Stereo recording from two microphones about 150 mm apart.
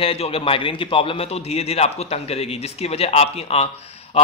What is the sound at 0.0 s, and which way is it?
A man's voice, 40° left (ahead or behind).